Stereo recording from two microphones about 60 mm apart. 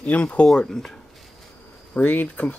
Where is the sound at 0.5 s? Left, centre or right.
Centre.